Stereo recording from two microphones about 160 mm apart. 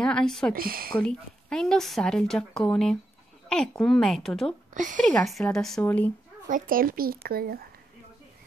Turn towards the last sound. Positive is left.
turn(degrees=-70)  # may be behind; listen again after turning